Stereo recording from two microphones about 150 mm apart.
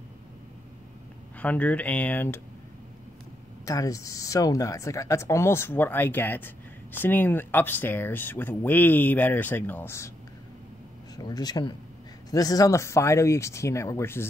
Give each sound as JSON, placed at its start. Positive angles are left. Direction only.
{"t": 1.4, "sound": "speech", "side_deg": 10}
{"t": 3.6, "sound": "speech", "side_deg": 25}
{"t": 11.1, "sound": "speech", "side_deg": 25}